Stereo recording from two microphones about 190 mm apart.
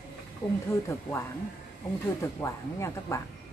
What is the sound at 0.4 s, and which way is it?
Speech, 5° left (ahead or behind).